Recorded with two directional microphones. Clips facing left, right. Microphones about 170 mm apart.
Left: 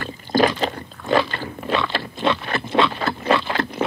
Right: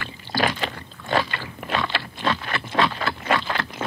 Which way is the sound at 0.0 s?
45° left (ahead or behind).